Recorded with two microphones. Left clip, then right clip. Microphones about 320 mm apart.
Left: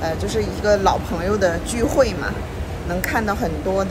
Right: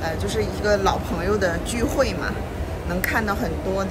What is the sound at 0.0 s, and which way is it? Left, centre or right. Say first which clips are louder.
Speech: left 2 dB; centre.